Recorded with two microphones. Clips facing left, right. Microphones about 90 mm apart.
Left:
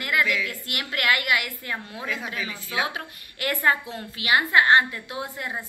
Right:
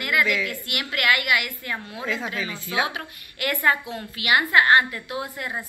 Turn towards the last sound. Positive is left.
turn(degrees=25)  # may be behind; listen again after turning